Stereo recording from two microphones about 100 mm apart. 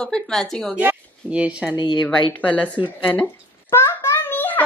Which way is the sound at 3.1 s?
20° left (ahead or behind).